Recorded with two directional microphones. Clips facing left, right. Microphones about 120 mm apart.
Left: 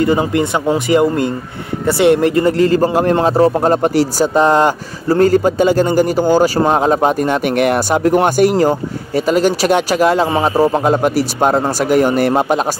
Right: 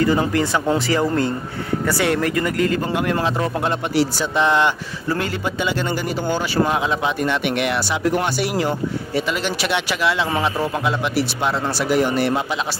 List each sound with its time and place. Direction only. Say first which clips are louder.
0.0 s a man's voice: left 4 dB; 20° left (ahead or behind); by 12.5 s 50° left (ahead or behind)